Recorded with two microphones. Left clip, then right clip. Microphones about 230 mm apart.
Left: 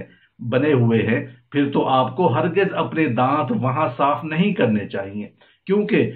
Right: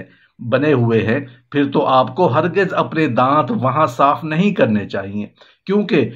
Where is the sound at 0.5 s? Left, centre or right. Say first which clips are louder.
Right 3 dB; right.